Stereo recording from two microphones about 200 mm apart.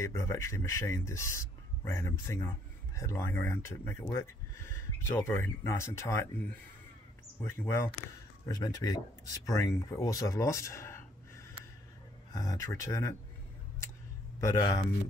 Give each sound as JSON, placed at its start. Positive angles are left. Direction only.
{"t": 0.0, "sound": "speech", "side_deg": 15}
{"t": 7.3, "sound": "speech", "side_deg": 10}
{"t": 14.4, "sound": "speech", "side_deg": 15}